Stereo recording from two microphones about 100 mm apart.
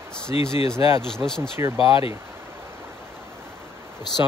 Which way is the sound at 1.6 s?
35° right (ahead or behind).